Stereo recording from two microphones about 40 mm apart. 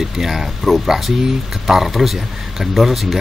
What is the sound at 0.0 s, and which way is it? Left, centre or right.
Speech, centre.